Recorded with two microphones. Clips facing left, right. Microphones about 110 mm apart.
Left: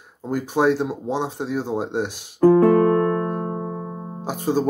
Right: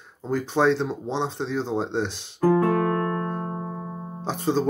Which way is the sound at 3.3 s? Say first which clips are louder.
Left 4 dB; 20° left (ahead or behind).